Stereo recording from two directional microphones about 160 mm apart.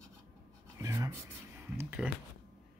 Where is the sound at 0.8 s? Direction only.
20° right (ahead or behind).